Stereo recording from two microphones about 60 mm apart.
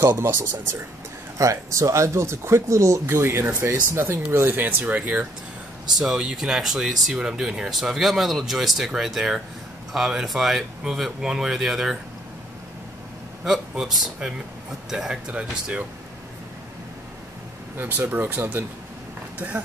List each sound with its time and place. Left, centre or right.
0.2 s speech: right
1.4 s speech: right
5.9 s speech: centre
13.4 s a man's voice: centre
17.7 s speech: right